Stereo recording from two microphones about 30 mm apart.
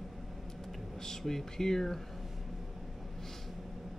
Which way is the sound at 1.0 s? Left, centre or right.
Centre.